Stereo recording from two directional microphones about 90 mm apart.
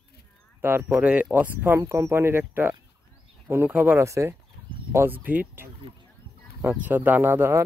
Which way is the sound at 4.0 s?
35° right (ahead or behind).